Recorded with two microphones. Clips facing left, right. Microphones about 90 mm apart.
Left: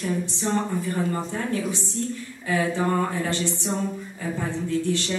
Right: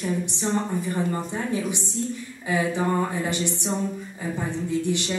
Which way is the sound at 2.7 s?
10° right (ahead or behind).